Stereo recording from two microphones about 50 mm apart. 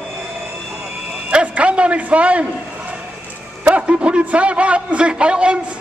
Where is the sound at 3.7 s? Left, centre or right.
Right.